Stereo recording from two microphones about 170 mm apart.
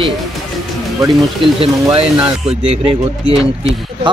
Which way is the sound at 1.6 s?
35° right (ahead or behind).